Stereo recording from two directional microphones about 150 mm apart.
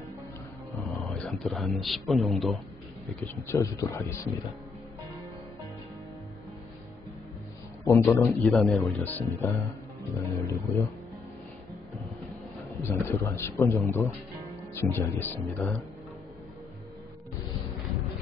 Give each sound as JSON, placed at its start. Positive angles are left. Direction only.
{"t": 1.4, "sound": "a man's voice", "side_deg": 0}
{"t": 3.2, "sound": "speech", "side_deg": 15}
{"t": 7.8, "sound": "speech", "side_deg": 20}
{"t": 8.5, "sound": "a man's voice", "side_deg": 0}
{"t": 8.8, "sound": "speech", "side_deg": 10}
{"t": 12.8, "sound": "speech", "side_deg": 15}